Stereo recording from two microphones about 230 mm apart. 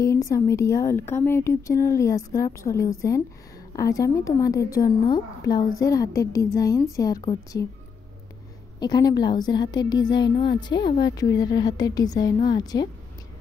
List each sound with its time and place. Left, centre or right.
0.0 s a woman's voice: centre
8.7 s a woman's voice: centre